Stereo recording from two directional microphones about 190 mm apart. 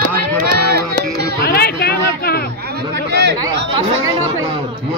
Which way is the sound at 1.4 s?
55° left (ahead or behind).